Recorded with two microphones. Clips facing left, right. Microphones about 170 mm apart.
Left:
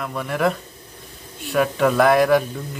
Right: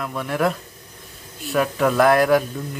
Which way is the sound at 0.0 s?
Centre (ahead or behind).